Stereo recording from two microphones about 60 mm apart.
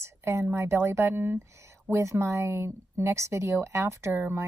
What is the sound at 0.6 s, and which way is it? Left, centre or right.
A woman's voice, right.